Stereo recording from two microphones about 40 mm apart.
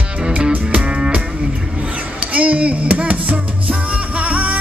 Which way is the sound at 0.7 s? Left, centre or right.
Right.